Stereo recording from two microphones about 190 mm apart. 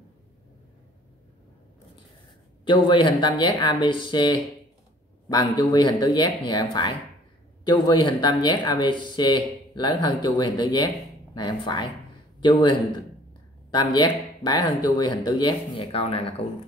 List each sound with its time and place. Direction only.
2.6 s a man's voice: 25° left (ahead or behind)